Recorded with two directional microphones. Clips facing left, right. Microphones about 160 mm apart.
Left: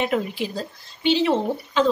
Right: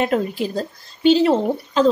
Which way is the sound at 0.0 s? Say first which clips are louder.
Right 4 dB; 45° right (ahead or behind).